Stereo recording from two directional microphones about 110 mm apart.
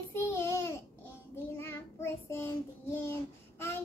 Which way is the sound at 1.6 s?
20° left (ahead or behind).